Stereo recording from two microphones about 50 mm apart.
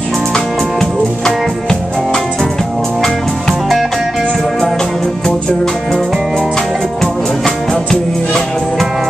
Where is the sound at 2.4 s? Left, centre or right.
Centre.